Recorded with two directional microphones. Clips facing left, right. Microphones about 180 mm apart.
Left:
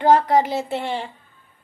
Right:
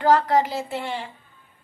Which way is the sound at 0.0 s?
20° left (ahead or behind).